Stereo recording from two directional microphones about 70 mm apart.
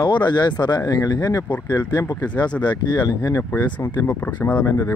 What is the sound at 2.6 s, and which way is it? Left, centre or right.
Speech, left.